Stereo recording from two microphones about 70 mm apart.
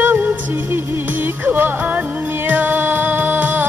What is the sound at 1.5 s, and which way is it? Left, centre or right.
Music, right.